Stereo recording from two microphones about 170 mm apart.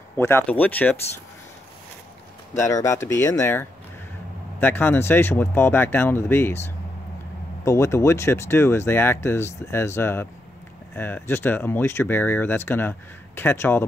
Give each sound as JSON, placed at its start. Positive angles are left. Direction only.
{"t": 0.2, "sound": "speech", "side_deg": 15}
{"t": 2.6, "sound": "speech", "side_deg": 15}